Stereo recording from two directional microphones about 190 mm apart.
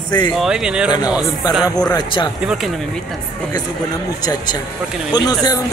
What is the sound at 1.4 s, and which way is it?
Speech, 20° left (ahead or behind).